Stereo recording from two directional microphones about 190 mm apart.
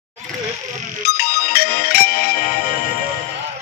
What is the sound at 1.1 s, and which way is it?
Music, 55° left (ahead or behind).